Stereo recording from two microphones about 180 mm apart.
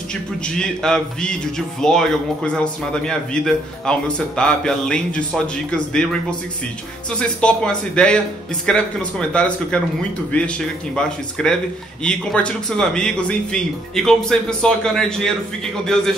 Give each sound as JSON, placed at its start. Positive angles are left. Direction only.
{"t": 0.1, "sound": "speech", "side_deg": 5}
{"t": 7.2, "sound": "speech", "side_deg": 5}